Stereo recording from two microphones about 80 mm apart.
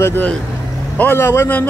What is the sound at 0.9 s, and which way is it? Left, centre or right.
Speech, left.